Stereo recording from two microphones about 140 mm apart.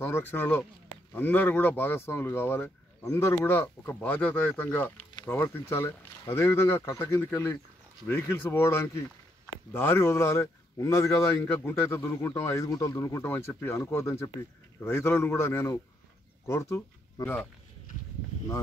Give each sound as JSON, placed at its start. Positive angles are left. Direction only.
{"t": 0.0, "sound": "speech", "side_deg": 15}